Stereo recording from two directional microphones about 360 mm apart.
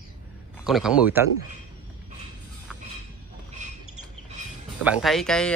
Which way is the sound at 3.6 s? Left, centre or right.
Right.